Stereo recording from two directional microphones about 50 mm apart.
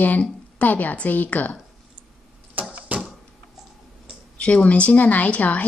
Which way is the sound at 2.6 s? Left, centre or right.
Right.